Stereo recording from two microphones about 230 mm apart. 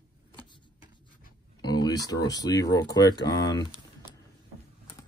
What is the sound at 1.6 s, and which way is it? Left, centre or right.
Speech, centre.